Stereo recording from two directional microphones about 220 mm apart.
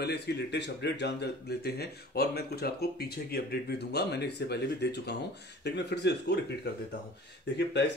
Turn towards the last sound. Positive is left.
turn(degrees=50)  # may be behind; listen again after turning